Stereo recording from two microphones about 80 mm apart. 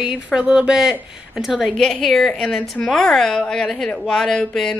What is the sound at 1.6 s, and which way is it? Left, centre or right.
A woman's voice, centre.